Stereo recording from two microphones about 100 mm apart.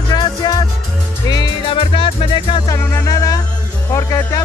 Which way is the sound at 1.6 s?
60° left (ahead or behind).